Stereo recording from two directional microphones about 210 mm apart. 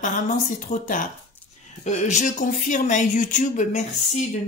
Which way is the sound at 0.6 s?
40° left (ahead or behind).